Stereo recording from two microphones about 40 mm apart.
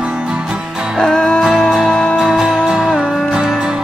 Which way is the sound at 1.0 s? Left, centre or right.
Centre.